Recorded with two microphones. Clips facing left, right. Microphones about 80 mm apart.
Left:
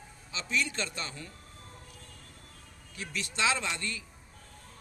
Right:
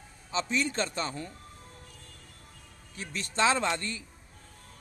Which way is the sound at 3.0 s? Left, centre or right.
Right.